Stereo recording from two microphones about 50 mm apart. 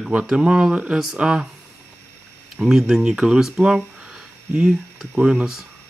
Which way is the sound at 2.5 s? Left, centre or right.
Centre.